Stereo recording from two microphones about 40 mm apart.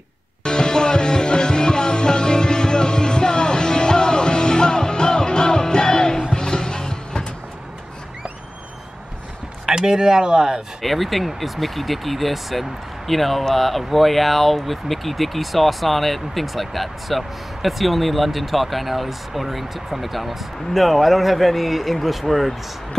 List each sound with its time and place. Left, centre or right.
0.4 s music: centre
9.7 s speech: centre
10.8 s speech: centre